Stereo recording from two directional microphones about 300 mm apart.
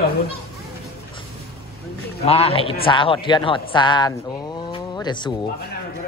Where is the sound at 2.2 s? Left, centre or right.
Centre.